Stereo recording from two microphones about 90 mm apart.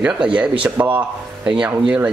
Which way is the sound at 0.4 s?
15° right (ahead or behind).